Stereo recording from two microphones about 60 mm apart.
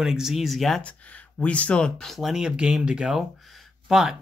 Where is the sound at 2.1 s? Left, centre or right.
Centre.